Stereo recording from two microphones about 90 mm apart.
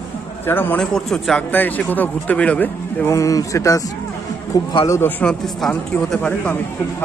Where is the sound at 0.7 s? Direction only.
5° left (ahead or behind).